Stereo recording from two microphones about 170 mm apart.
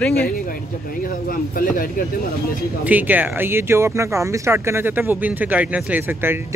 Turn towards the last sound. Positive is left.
turn(degrees=-15)  # may be behind; listen again after turning